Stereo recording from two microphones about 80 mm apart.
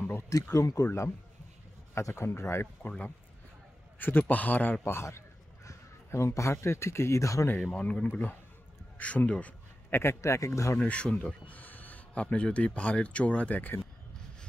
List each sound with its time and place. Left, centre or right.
0.3 s speech: left
2.0 s speech: left
4.0 s a man's voice: left
4.8 s a man's voice: left
7.7 s speech: centre
8.9 s a sound: centre
9.9 s speech: left
10.8 s speech: centre